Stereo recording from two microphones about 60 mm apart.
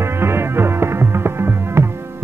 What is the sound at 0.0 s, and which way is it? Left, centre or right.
Music, right.